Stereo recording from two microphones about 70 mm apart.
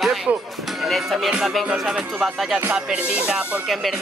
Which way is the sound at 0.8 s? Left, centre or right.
Centre.